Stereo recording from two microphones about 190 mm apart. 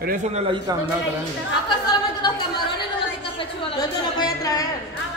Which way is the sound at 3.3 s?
25° left (ahead or behind).